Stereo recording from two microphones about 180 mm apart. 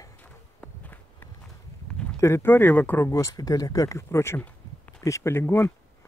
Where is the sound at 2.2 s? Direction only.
15° left (ahead or behind).